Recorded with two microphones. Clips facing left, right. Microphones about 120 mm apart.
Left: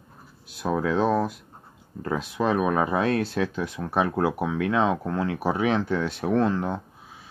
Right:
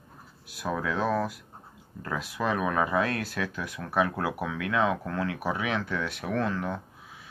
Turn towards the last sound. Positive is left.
turn(degrees=30)  # may be behind; listen again after turning